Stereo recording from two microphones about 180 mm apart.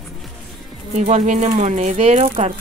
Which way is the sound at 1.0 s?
40° right (ahead or behind).